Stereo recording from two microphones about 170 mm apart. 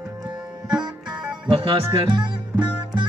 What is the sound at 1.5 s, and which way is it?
Speech, 30° right (ahead or behind).